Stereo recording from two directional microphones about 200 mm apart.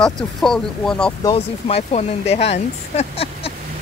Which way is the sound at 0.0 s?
Centre (ahead or behind).